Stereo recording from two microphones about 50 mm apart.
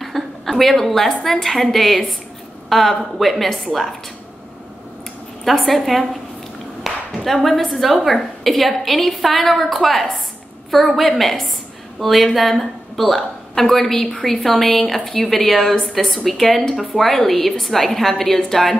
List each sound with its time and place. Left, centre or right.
0.0 s a woman's voice: centre
5.4 s a woman's voice: centre